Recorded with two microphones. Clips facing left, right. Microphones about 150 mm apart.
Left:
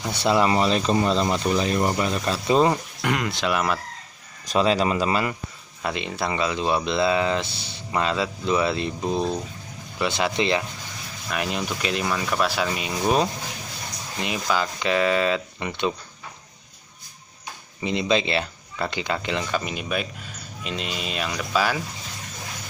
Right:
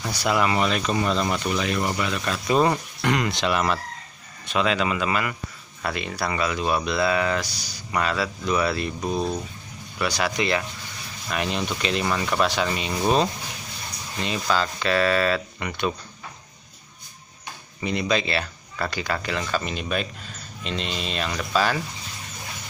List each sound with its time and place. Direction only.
0.1 s speech: 25° left (ahead or behind)
2.7 s speech: 5° left (ahead or behind)
4.5 s speech: 35° left (ahead or behind)
5.8 s speech: 20° left (ahead or behind)
11.2 s speech: 5° left (ahead or behind); by 15.9 s 20° left (ahead or behind)
17.8 s speech: 20° left (ahead or behind)